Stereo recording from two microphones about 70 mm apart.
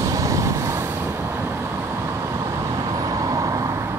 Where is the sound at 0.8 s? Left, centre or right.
Right.